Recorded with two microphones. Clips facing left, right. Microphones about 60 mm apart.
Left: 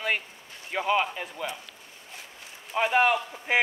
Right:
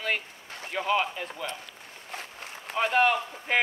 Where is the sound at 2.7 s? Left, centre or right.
Centre.